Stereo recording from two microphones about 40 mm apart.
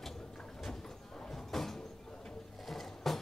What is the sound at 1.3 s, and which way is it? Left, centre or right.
Sliding door, centre.